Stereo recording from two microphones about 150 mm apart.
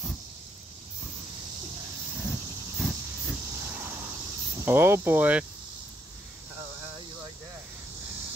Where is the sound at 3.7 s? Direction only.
15° right (ahead or behind).